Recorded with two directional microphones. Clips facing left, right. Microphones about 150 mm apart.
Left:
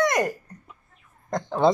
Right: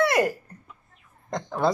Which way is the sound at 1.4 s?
20° left (ahead or behind).